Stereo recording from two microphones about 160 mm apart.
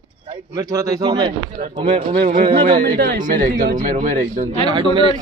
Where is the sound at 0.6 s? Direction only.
20° right (ahead or behind).